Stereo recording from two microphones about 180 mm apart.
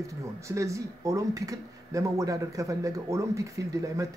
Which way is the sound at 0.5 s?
15° right (ahead or behind).